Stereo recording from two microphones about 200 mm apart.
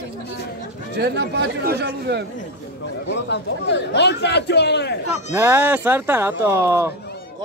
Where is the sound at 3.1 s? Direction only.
60° left (ahead or behind).